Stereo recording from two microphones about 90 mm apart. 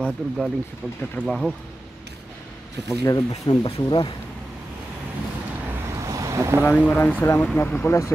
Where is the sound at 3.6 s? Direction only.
70° left (ahead or behind).